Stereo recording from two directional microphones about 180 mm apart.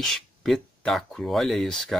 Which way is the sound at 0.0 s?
Centre (ahead or behind).